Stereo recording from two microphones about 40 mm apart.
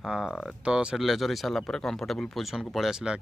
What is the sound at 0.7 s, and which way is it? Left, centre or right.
Speech, right.